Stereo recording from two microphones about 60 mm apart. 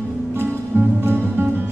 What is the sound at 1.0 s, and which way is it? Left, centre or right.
Music, right.